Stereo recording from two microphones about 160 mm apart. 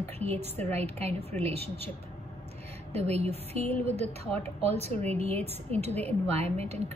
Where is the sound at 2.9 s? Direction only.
40° right (ahead or behind).